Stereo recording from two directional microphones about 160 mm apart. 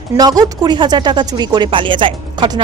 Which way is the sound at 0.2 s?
25° right (ahead or behind).